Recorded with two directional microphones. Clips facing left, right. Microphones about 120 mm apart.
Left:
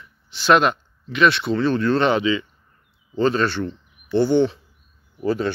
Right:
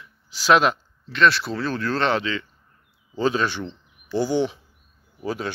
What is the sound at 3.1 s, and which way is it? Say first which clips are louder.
Speech: left 3 dB; 10° right (ahead or behind).